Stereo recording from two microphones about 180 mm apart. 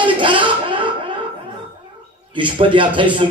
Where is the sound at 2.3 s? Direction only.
30° right (ahead or behind).